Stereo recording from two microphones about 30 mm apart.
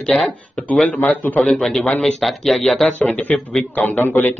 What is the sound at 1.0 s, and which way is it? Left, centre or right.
Speech, left.